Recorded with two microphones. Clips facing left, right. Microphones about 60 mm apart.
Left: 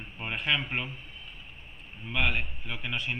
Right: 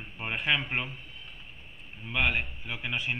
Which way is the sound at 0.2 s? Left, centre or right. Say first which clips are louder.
Right 1 dB; centre.